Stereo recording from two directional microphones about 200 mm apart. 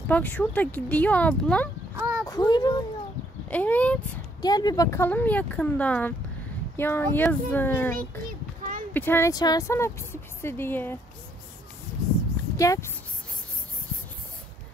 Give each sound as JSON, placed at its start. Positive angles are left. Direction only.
{"t": 0.1, "sound": "speech", "side_deg": 5}
{"t": 2.0, "sound": "a sound", "side_deg": -15}
{"t": 2.2, "sound": "speech", "side_deg": 15}
{"t": 3.4, "sound": "speech", "side_deg": 5}
{"t": 4.4, "sound": "speech", "side_deg": 20}
{"t": 7.9, "sound": "child singing", "side_deg": -45}
{"t": 8.9, "sound": "speech", "side_deg": 10}
{"t": 12.5, "sound": "speech", "side_deg": 15}